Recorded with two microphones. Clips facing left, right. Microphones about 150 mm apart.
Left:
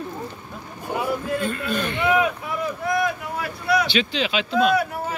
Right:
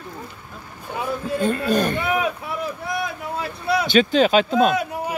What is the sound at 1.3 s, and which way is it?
Speech, 35° right (ahead or behind).